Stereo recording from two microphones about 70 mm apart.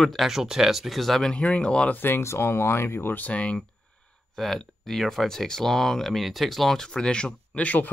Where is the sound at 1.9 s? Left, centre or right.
Left.